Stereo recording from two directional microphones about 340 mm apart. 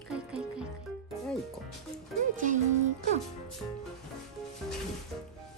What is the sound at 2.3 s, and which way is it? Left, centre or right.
Music, right.